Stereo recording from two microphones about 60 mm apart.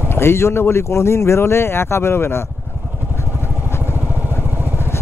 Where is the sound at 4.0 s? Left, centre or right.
Right.